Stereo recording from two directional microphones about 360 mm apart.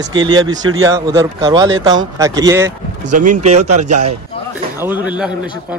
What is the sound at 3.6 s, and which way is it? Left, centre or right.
Speech, right.